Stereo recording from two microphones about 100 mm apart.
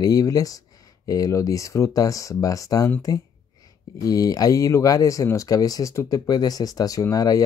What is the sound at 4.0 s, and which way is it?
Speech, 35° left (ahead or behind).